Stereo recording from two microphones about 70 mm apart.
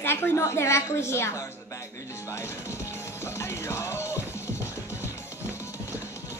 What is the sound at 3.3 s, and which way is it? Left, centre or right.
Music, left.